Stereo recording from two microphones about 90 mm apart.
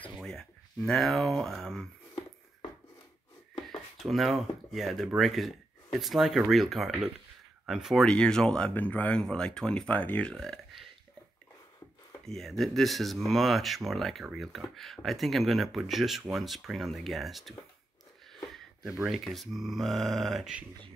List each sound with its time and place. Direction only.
0.2 s speech: 5° left (ahead or behind)
4.0 s speech: centre (ahead or behind)
8.1 s speech: 10° left (ahead or behind)
10.3 s burping: 5° left (ahead or behind)
12.3 s speech: 5° left (ahead or behind)
18.3 s a sound: 5° right (ahead or behind)
19.0 s speech: centre (ahead or behind)